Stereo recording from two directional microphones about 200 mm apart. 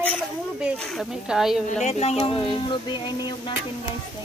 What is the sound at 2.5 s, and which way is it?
Music, 25° left (ahead or behind).